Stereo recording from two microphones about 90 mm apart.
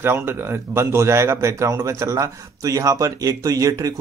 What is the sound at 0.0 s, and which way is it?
Speech, 25° right (ahead or behind).